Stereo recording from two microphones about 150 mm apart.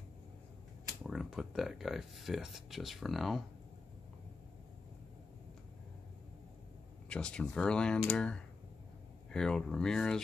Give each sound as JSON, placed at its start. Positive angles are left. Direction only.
{"t": 1.0, "sound": "speech", "side_deg": -5}
{"t": 7.1, "sound": "speech", "side_deg": 5}